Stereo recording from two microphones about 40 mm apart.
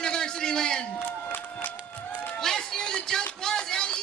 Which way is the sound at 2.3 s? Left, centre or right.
Centre.